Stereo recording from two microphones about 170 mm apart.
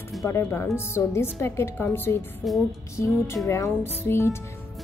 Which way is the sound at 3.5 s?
15° left (ahead or behind).